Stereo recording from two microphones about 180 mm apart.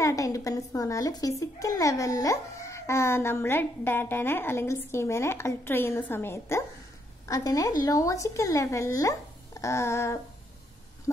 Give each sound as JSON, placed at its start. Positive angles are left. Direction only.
{"t": 0.0, "sound": "a child's voice", "side_deg": 20}